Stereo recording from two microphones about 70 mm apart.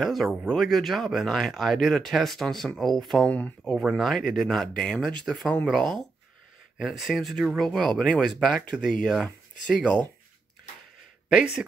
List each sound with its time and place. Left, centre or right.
0.0 s speech: centre
3.3 s speech: centre
3.9 s speech: centre
11.2 s speech: centre